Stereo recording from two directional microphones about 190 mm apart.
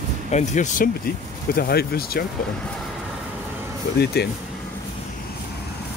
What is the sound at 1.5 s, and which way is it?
Speech, 55° left (ahead or behind).